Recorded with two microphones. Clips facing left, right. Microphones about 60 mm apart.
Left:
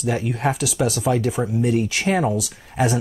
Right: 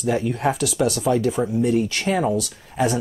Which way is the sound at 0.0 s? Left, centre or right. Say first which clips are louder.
Right 1 dB; centre.